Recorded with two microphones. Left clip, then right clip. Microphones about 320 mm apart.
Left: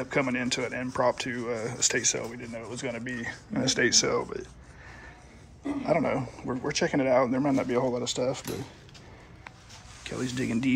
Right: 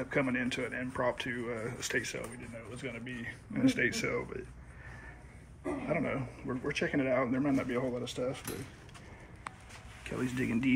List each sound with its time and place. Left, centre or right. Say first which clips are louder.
0.0 s speech: left 4 dB; centre
3.0 s speech: left 7 dB; left
3.9 s speech: left 9 dB; centre
5.9 s speech: left 9 dB; centre
10.0 s speech: left 3 dB; centre